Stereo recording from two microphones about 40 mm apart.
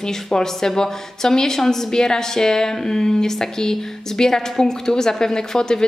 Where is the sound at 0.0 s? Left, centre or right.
Centre.